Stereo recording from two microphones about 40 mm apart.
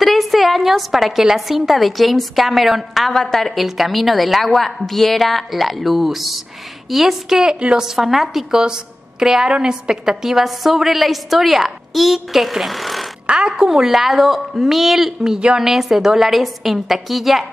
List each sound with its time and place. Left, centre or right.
0.0 s a sound: centre
1.2 s a woman's voice: centre
3.1 s a woman's voice: centre
8.5 s a woman's voice: centre
13.7 s a woman's voice: centre
15.3 s a woman's voice: centre
15.7 s a woman's voice: centre